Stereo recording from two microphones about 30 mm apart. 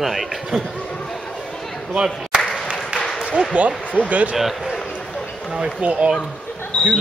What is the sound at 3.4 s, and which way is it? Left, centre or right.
Speech, right.